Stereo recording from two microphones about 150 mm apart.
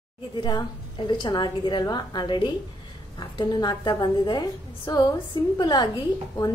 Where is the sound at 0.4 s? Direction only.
30° left (ahead or behind).